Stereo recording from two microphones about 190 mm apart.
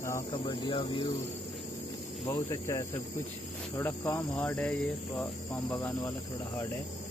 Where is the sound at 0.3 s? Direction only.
25° left (ahead or behind).